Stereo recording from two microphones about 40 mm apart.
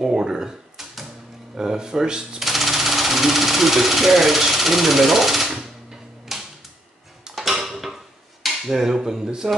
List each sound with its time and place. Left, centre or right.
0.0 s a sound: centre
1.6 s speech: centre
2.4 s speech: centre
6.3 s typewriter: centre
7.3 s cutlery: centre
9.0 s speech: centre